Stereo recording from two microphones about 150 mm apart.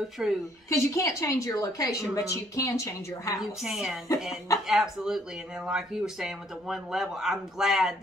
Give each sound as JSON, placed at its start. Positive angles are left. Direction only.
{"t": 0.2, "sound": "speech", "side_deg": -5}
{"t": 0.7, "sound": "a woman's voice", "side_deg": 20}
{"t": 3.3, "sound": "speech", "side_deg": -5}